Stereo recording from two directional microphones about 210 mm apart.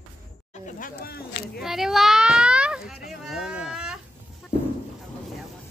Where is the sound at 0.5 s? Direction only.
40° left (ahead or behind).